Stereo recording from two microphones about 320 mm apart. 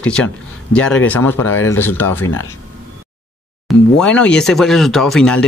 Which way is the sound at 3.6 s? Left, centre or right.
Centre.